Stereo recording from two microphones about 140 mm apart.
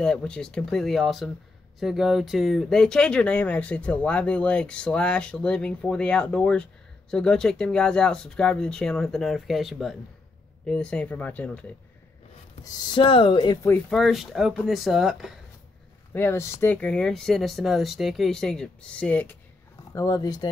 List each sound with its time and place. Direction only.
0.0 s speech: 5° left (ahead or behind)
12.6 s speech: 35° left (ahead or behind)
13.7 s speech: 15° left (ahead or behind)
13.9 s speech: centre (ahead or behind)
16.1 s speech: 15° left (ahead or behind)
19.9 s speech: 25° left (ahead or behind)